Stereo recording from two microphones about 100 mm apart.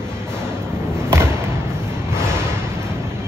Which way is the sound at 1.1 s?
25° right (ahead or behind).